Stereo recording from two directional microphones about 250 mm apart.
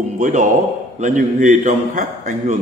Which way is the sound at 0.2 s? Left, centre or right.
Right.